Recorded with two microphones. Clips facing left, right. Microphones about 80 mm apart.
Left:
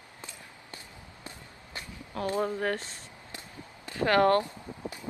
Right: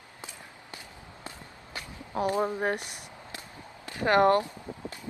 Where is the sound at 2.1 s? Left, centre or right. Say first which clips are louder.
Right 2 dB; centre.